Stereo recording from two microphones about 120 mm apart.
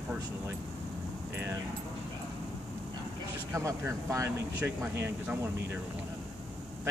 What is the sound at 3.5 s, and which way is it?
A man's voice, 25° right (ahead or behind).